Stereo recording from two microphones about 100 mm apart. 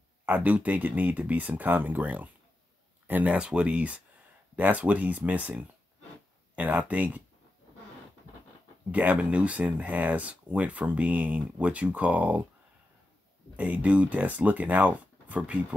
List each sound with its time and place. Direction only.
0.2 s speech: 15° right (ahead or behind)
8.9 s speech: 15° right (ahead or behind)
13.6 s speech: 15° right (ahead or behind)